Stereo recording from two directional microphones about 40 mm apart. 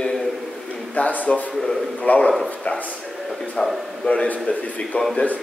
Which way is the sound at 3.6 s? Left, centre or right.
Centre.